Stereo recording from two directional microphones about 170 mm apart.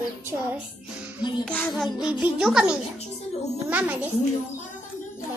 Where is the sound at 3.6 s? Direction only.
10° right (ahead or behind).